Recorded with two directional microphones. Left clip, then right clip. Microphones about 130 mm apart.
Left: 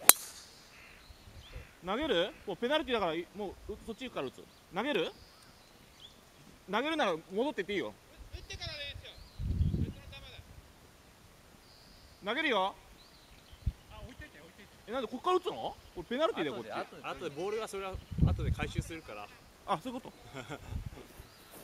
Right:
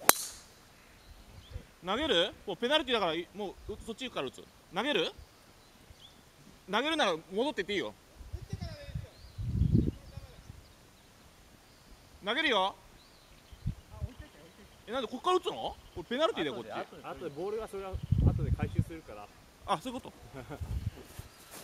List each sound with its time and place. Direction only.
0.0 s a sound: centre (ahead or behind)
1.9 s speech: centre (ahead or behind)
6.7 s speech: centre (ahead or behind)
8.5 s a sound: 15° right (ahead or behind)
12.3 s speech: centre (ahead or behind)
14.9 s speech: centre (ahead or behind)